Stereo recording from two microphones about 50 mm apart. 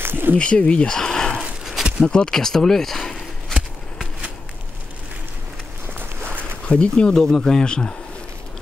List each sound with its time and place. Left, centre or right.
0.0 s a sound: right
0.4 s speech: left
5.9 s walk: right
6.7 s speech: left